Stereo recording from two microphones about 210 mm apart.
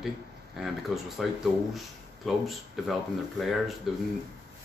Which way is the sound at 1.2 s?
Centre (ahead or behind).